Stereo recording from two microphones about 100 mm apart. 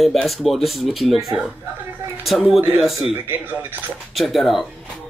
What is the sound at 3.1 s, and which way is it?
Speech, 20° right (ahead or behind).